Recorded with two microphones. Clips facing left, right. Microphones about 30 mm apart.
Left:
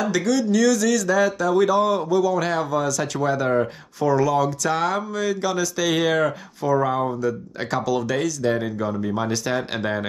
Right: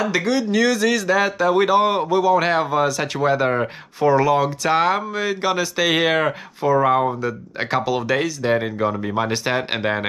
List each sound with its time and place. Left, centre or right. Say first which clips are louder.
0.0 s speech: right 1 dB; right